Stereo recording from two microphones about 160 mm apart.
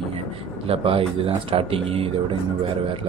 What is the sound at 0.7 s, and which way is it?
A man's voice, 35° right (ahead or behind).